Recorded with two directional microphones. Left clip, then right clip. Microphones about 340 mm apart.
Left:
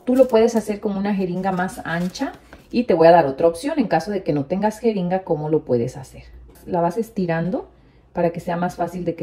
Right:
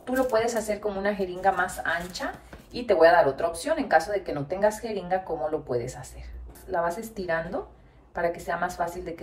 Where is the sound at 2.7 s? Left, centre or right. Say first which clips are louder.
Left 6 dB; centre.